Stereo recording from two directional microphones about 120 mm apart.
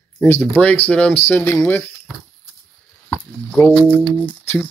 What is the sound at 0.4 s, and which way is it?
Speech, 10° left (ahead or behind).